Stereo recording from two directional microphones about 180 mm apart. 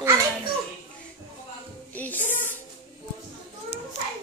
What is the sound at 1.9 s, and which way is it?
Speech, 10° left (ahead or behind).